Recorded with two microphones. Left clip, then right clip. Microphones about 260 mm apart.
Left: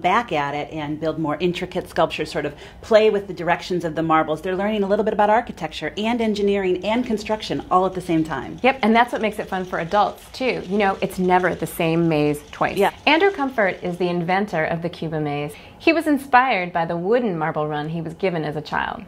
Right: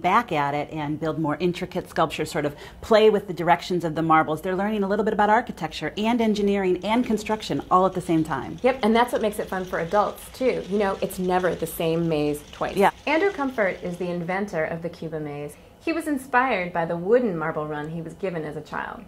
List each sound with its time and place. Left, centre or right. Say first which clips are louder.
0.0 s speech: left 2 dB; right
2.9 s speech: left 2 dB; right
8.6 s speech: left 3 dB; left
9.2 s speech: left 2 dB; centre
11.6 s speech: left 4 dB; left
13.3 s speech: left 4 dB; centre
13.8 s speech: left 6 dB; left